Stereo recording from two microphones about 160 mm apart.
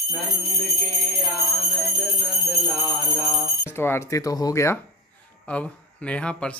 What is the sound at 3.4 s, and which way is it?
Speech, 15° left (ahead or behind).